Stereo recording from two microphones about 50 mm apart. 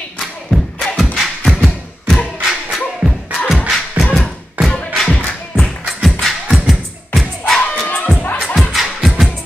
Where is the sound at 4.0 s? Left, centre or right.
Centre.